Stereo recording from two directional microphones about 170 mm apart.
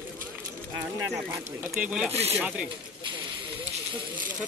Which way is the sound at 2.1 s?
35° right (ahead or behind).